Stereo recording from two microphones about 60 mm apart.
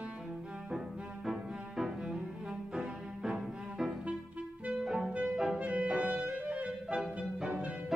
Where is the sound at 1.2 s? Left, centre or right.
Centre.